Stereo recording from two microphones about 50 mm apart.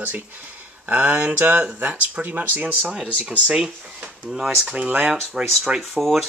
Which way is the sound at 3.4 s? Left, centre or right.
Centre.